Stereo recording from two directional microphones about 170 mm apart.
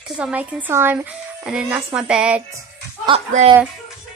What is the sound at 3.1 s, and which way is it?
Speech, 35° right (ahead or behind).